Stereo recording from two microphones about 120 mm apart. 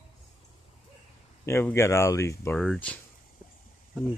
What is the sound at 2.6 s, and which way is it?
Speech, 10° left (ahead or behind).